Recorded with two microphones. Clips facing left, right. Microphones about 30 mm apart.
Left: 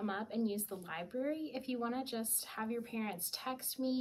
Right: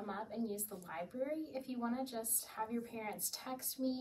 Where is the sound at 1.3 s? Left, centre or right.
Left.